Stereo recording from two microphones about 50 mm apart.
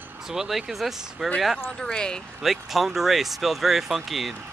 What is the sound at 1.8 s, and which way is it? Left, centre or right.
Speech, centre.